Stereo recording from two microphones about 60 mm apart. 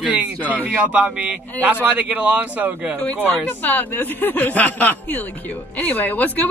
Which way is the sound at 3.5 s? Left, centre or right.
Left.